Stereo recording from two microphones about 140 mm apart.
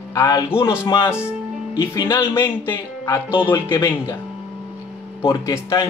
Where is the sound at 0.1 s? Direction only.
20° left (ahead or behind).